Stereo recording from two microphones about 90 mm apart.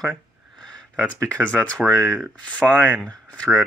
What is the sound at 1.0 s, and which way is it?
Speech, 15° left (ahead or behind).